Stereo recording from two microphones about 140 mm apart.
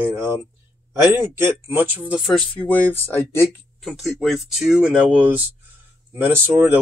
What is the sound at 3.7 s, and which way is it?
Speech, centre (ahead or behind).